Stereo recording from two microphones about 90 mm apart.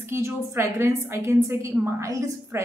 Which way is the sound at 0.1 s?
30° right (ahead or behind).